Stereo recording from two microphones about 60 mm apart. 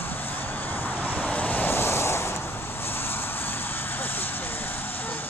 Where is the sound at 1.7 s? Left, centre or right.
Left.